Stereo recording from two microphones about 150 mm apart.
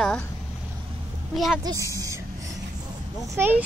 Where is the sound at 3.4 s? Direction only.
10° right (ahead or behind).